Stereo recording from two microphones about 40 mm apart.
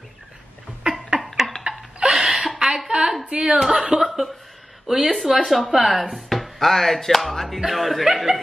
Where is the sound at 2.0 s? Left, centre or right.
Right.